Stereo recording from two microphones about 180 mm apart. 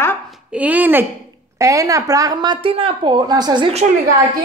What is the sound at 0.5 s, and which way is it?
A woman's voice, 10° right (ahead or behind).